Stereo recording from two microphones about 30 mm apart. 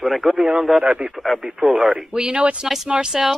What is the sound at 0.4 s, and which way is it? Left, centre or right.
Speech, right.